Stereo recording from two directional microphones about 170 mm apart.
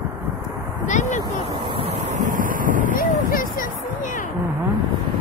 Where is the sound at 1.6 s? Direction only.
35° right (ahead or behind); by 2.9 s 50° right (ahead or behind).